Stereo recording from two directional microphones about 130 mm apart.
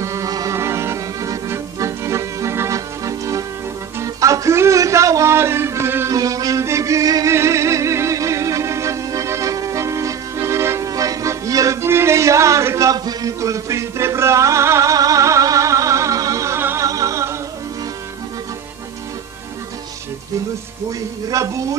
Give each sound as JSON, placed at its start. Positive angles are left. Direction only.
{"t": 0.0, "sound": "music", "side_deg": -25}
{"t": 21.3, "sound": "speech", "side_deg": -25}